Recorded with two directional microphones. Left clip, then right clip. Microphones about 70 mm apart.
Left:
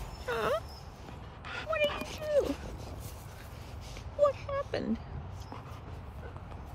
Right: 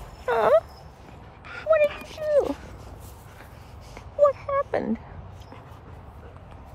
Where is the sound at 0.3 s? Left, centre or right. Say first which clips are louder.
Right 12 dB; centre.